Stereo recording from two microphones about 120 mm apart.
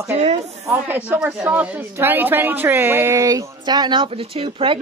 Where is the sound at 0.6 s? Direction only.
20° right (ahead or behind).